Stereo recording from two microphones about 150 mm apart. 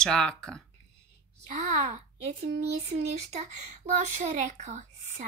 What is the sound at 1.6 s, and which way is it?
Speech, 55° right (ahead or behind).